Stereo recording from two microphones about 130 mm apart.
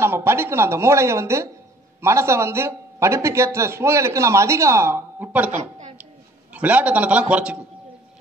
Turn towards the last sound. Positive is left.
turn(degrees=-10)  # may be behind; listen again after turning